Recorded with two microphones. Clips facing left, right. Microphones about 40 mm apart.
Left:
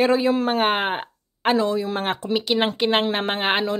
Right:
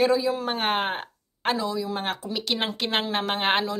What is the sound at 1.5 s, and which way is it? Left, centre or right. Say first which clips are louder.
Speech: left 6 dB; left.